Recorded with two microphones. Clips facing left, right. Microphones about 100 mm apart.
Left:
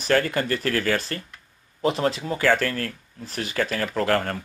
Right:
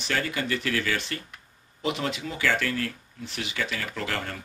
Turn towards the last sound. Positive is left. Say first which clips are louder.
# left 9 dB
turn(degrees=50)  # may be behind; listen again after turning